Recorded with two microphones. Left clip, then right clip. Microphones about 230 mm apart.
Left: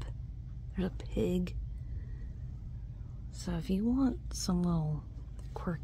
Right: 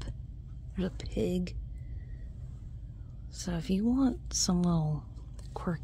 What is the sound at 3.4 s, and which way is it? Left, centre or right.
A woman's voice, centre.